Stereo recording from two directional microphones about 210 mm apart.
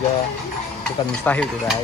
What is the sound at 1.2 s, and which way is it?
Speech, 5° left (ahead or behind).